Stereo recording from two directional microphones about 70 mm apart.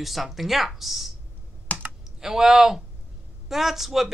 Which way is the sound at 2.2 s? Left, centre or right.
Centre.